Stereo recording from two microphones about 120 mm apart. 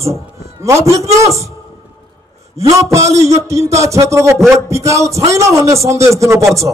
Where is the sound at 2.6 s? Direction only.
25° right (ahead or behind).